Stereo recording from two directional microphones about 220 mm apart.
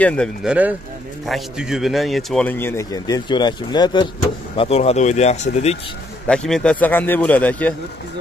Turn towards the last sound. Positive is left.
turn(degrees=5)  # may be behind; listen again after turning